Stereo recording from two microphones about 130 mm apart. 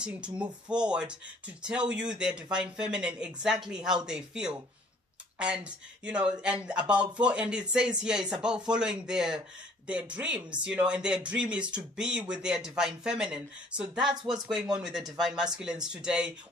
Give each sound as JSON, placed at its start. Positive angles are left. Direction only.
{"t": 0.0, "sound": "speech", "side_deg": -10}